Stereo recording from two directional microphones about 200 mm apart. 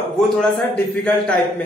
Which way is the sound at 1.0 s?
5° left (ahead or behind).